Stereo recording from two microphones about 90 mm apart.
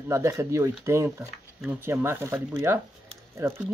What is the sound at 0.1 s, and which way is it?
Speech, 30° right (ahead or behind).